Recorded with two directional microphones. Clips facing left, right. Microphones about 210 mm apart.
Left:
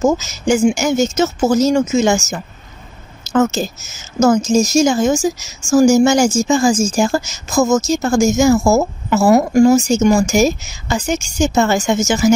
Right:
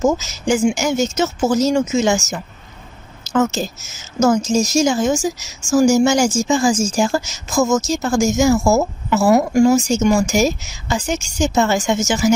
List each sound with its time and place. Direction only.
0.0 s speech: 45° left (ahead or behind)
4.2 s speech: 45° left (ahead or behind)